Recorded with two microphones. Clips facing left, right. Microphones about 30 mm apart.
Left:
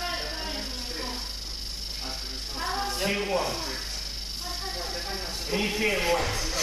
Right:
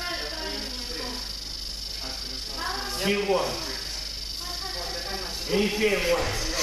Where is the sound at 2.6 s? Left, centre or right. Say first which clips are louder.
Left 2 dB; centre.